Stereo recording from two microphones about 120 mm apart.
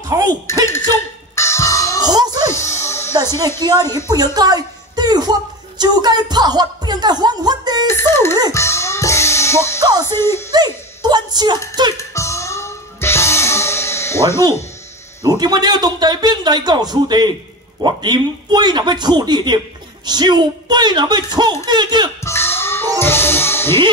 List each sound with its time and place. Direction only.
0.1 s speech: 30° right (ahead or behind)
1.3 s music: 25° left (ahead or behind)
2.0 s music: 35° right (ahead or behind)
2.5 s music: 20° left (ahead or behind)
3.3 s speech: 20° left (ahead or behind)
3.9 s speech: 35° right (ahead or behind)
7.8 s speech: 20° left (ahead or behind)
8.5 s music: 25° left (ahead or behind)
10.1 s speech: 20° left (ahead or behind)
11.0 s a woman's voice: 35° right (ahead or behind)
12.0 s music: 25° left (ahead or behind)
15.2 s speech: 35° right (ahead or behind)
22.2 s music: 20° left (ahead or behind)